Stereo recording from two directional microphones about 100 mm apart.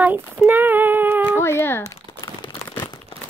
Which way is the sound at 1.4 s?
25° left (ahead or behind).